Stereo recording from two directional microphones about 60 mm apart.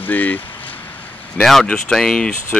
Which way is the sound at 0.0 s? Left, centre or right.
Left.